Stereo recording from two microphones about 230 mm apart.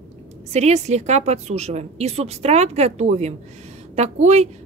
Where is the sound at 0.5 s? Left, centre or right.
Right.